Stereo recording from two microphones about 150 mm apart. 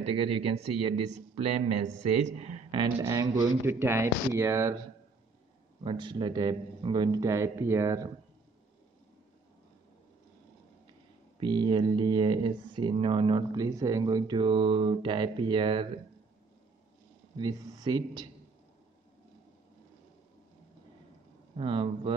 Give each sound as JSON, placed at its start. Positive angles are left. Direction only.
{"t": 0.0, "sound": "speech", "side_deg": -40}
{"t": 2.7, "sound": "a man's voice", "side_deg": -25}
{"t": 5.9, "sound": "a man's voice", "side_deg": -35}
{"t": 11.3, "sound": "speech", "side_deg": -30}
{"t": 17.4, "sound": "a man's voice", "side_deg": -25}
{"t": 21.5, "sound": "speech", "side_deg": -35}